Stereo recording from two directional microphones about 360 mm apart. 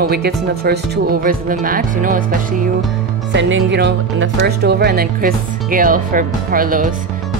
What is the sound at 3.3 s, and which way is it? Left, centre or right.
Speech, right.